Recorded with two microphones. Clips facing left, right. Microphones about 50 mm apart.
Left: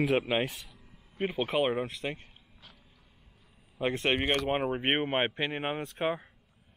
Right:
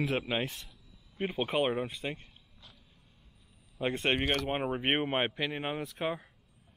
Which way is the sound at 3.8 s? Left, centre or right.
Centre.